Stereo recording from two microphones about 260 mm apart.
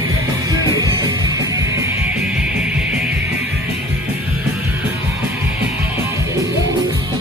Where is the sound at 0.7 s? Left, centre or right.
Centre.